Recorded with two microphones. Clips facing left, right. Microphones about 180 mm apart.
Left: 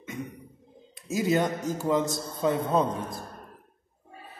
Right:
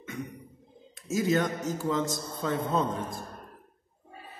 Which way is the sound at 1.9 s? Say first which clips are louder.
Left 5 dB; 15° left (ahead or behind).